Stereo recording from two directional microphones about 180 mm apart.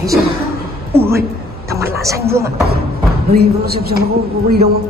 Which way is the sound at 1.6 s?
15° right (ahead or behind).